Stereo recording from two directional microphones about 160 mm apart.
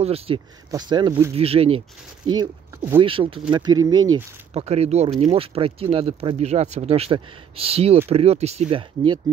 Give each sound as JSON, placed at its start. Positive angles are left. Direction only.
{"t": 0.0, "sound": "speech", "side_deg": -40}
{"t": 0.7, "sound": "speech", "side_deg": -25}
{"t": 1.3, "sound": "speech", "side_deg": -40}
{"t": 2.2, "sound": "speech", "side_deg": -25}
{"t": 3.0, "sound": "speech", "side_deg": -35}
{"t": 4.6, "sound": "speech", "side_deg": -40}